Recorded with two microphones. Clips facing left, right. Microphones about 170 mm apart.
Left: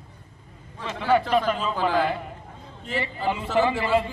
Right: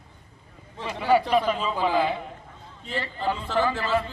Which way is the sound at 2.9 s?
10° left (ahead or behind).